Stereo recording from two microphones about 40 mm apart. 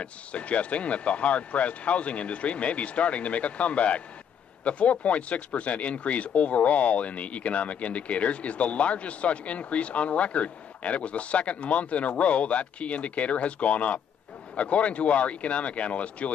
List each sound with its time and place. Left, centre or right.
0.0 s speech: left